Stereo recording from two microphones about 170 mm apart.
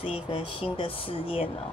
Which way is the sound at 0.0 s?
35° left (ahead or behind).